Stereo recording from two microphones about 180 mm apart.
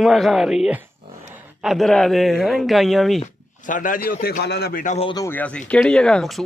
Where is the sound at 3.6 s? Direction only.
45° left (ahead or behind); by 4.8 s 60° left (ahead or behind).